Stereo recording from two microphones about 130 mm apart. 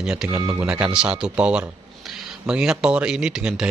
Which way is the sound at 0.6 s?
10° right (ahead or behind).